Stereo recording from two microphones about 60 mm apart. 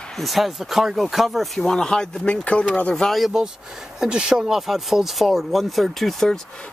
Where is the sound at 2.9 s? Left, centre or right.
Centre.